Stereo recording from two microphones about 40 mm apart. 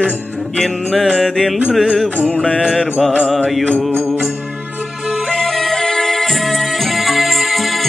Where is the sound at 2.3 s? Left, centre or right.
Left.